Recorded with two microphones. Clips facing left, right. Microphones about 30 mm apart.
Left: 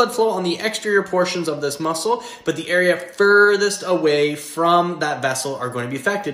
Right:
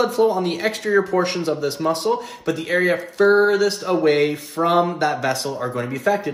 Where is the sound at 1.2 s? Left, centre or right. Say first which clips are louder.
Even; left.